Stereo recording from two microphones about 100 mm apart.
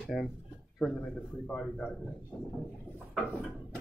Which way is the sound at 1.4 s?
5° left (ahead or behind).